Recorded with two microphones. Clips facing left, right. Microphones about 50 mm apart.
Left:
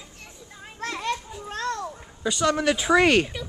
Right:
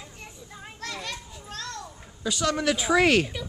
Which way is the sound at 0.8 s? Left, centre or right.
Left.